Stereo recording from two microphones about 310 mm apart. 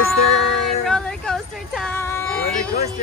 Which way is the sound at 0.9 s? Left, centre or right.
Centre.